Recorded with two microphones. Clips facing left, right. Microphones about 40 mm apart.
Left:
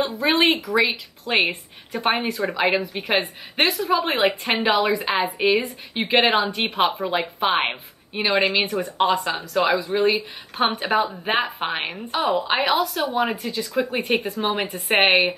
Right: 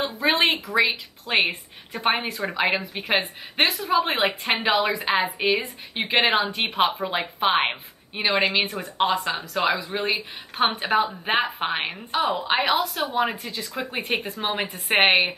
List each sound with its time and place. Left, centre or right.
0.4 s a woman's voice: centre